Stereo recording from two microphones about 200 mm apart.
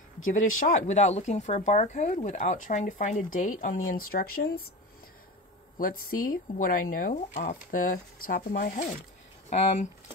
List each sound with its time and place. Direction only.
0.7 s speech: 35° left (ahead or behind)
5.8 s speech: 45° left (ahead or behind)